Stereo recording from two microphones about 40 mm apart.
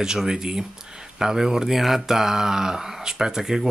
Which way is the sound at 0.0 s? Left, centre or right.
Centre.